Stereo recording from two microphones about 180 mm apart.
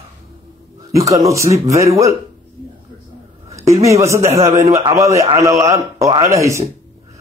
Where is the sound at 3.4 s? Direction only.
15° right (ahead or behind).